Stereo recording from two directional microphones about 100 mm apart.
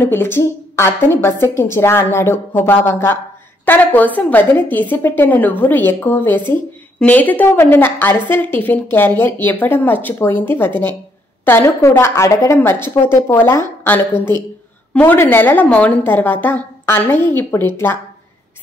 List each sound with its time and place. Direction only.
0.0 s a woman's voice: 20° left (ahead or behind)
12.5 s a woman's voice: 25° left (ahead or behind)